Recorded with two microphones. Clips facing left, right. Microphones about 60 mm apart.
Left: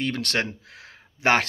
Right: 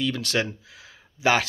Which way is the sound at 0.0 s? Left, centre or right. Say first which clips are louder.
Right 1 dB; left.